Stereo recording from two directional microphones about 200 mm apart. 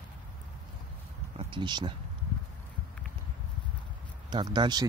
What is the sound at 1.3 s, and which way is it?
Speech, 25° right (ahead or behind).